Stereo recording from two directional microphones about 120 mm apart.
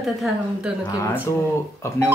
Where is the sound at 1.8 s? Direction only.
25° left (ahead or behind).